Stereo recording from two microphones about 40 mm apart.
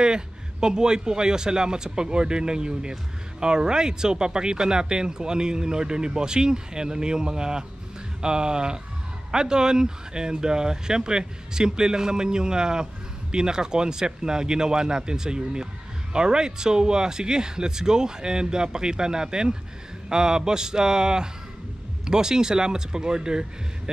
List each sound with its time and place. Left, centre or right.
0.0 s speech: centre